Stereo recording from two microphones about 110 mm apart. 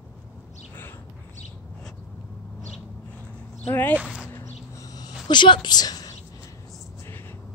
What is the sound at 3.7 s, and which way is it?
Speech, 20° left (ahead or behind).